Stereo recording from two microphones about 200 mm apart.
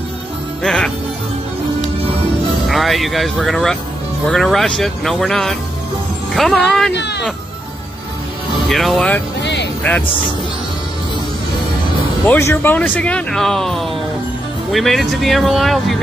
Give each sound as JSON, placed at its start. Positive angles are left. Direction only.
{"t": 0.6, "sound": "music", "side_deg": 5}
{"t": 2.7, "sound": "speech", "side_deg": 0}
{"t": 6.9, "sound": "speech", "side_deg": 60}
{"t": 8.6, "sound": "speech", "side_deg": 0}
{"t": 9.4, "sound": "music", "side_deg": 60}
{"t": 12.3, "sound": "speech", "side_deg": 10}